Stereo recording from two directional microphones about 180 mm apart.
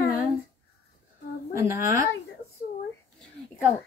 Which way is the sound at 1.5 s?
15° right (ahead or behind).